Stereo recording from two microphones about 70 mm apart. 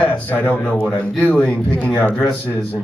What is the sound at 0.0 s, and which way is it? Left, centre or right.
Speech, left.